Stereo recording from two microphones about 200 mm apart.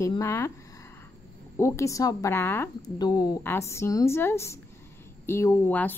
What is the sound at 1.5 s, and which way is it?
Speech, 15° left (ahead or behind).